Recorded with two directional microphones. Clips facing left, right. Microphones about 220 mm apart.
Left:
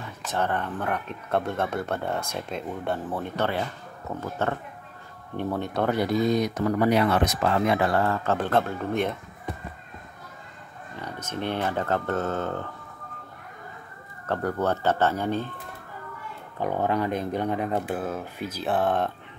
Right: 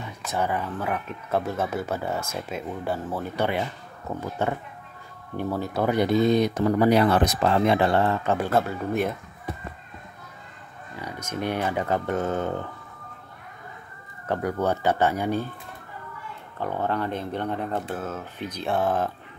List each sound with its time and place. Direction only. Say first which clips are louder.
0.2 s speech: even; 10° right (ahead or behind)
5.4 s speech: right 1 dB; 5° right (ahead or behind)
5.9 s speech: right 4 dB; 25° right (ahead or behind); by 9.1 s 5° right (ahead or behind)
11.0 s speech: right 1 dB; 10° right (ahead or behind)
14.2 s speech: right 1 dB; 15° right (ahead or behind)
16.5 s speech: left 2 dB; 15° left (ahead or behind)